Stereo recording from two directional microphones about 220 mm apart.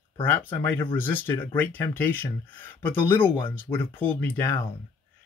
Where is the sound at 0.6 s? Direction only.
10° left (ahead or behind).